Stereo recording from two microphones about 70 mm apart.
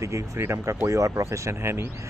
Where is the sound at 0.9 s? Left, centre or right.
Right.